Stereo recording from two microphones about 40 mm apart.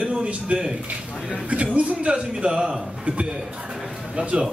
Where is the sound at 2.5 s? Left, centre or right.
Centre.